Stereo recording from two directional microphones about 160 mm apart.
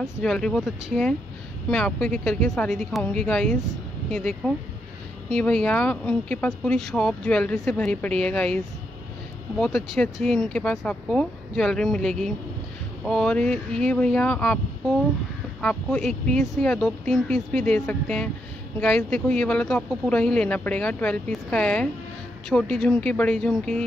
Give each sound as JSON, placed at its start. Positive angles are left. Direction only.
{"t": 0.0, "sound": "speech", "side_deg": 5}
{"t": 9.6, "sound": "speech", "side_deg": 5}
{"t": 15.6, "sound": "speech", "side_deg": 5}